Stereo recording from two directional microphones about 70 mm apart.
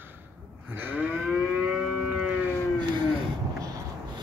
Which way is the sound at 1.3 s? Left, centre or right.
Centre.